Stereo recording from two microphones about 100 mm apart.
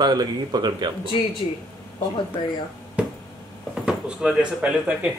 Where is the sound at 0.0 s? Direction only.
45° right (ahead or behind).